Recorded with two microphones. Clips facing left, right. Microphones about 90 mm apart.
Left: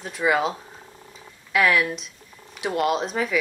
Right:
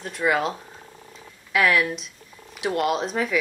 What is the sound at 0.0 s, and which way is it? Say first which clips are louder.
Speech: left 1 dB; centre (ahead or behind).